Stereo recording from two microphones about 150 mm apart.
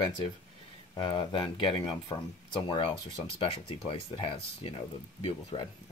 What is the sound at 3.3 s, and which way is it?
Speech, 40° left (ahead or behind).